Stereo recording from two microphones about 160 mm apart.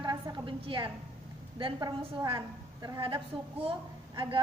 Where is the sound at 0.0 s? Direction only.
30° right (ahead or behind).